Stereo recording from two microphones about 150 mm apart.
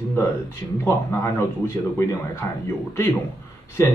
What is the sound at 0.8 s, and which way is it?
Speech, 15° left (ahead or behind).